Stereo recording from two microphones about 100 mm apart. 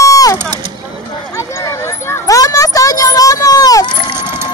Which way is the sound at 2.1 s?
35° left (ahead or behind).